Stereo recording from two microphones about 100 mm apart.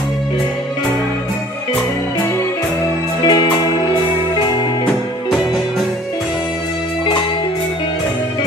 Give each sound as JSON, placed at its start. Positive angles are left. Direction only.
{"t": 3.3, "sound": "music", "side_deg": 50}
{"t": 5.3, "sound": "music", "side_deg": 0}